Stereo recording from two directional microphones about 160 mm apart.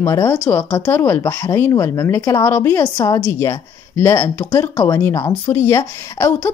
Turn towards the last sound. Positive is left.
turn(degrees=15)  # may be behind; listen again after turning